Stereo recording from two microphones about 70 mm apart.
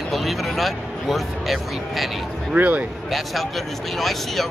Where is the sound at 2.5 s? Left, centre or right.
Right.